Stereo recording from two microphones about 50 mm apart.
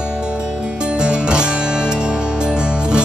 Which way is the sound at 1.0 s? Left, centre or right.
Centre.